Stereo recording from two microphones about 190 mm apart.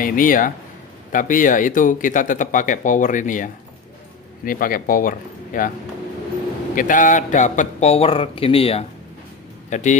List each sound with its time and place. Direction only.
0.0 s speech: 45° left (ahead or behind)
4.5 s speech: 50° left (ahead or behind)
6.7 s a man's voice: 45° left (ahead or behind)